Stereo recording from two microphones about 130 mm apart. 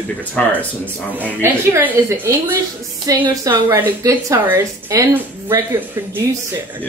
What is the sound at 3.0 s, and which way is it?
Speech, 30° right (ahead or behind).